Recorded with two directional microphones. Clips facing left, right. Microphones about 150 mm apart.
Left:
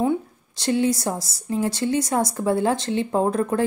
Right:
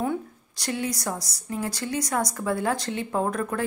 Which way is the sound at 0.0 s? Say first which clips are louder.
Left 5 dB; 25° left (ahead or behind).